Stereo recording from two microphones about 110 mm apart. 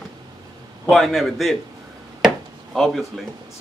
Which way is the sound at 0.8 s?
Centre (ahead or behind).